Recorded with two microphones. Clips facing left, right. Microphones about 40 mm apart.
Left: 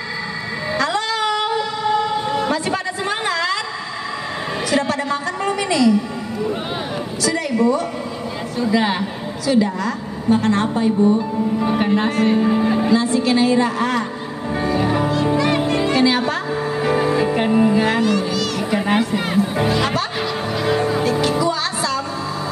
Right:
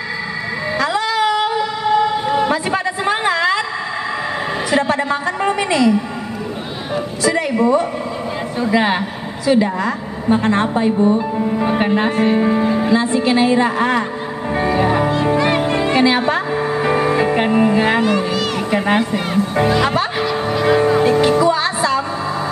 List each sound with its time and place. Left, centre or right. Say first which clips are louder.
0.7 s vehicle: right 2 dB; centre; by 3.6 s right
4.6 s a sound: right 3 dB; right
7.2 s music: right 2 dB; right
8.7 s a woman's voice: right 3 dB; right
12.4 s speech: right 2 dB; right
12.9 s a woman's voice: right 2 dB; right
14.6 s music: right 3 dB; right
17.8 s a woman's voice: right 2 dB; right
18.9 s speech: right 1 dB; centre
20.2 s music: right 4 dB; centre
20.6 s music: right 5 dB; right